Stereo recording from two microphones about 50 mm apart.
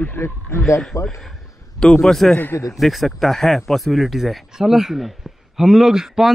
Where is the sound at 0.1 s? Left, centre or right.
Left.